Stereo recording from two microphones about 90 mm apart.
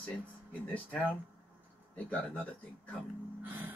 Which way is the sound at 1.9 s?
15° left (ahead or behind).